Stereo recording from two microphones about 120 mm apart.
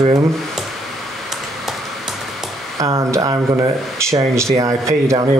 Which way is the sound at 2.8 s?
25° right (ahead or behind).